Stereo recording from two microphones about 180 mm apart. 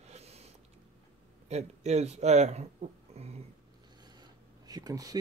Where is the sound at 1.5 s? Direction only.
40° right (ahead or behind).